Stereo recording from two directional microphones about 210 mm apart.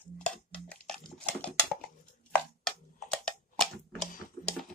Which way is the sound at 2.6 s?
5° left (ahead or behind).